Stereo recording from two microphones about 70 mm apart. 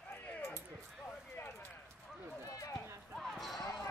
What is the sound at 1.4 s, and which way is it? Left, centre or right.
Clip-clop, left.